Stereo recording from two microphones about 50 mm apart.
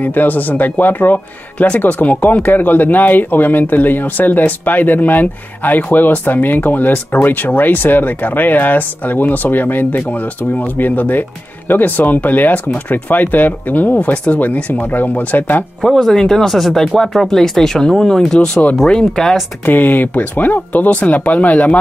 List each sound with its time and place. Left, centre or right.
0.0 s speech: left
15.8 s speech: centre
19.6 s speech: left